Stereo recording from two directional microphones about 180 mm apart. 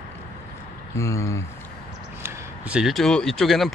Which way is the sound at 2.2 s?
5° right (ahead or behind).